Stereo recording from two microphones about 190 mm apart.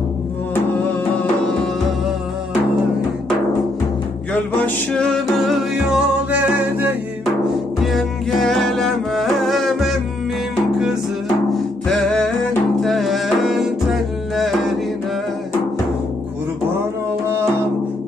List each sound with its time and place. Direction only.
4.3 s music: 5° left (ahead or behind)
11.5 s music: centre (ahead or behind)